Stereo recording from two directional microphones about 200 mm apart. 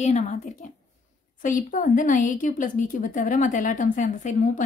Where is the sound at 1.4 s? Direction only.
40° left (ahead or behind).